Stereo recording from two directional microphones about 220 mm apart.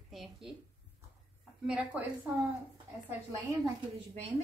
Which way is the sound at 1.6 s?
5° right (ahead or behind).